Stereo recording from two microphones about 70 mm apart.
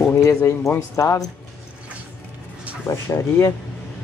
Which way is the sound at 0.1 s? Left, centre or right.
Left.